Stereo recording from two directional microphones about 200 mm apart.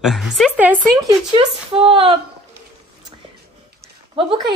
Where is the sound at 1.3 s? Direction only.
25° right (ahead or behind).